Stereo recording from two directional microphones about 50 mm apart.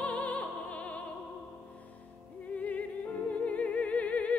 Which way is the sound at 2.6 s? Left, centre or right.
Left.